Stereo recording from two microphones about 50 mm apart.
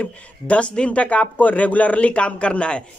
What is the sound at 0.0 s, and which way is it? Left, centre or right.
Speech, left.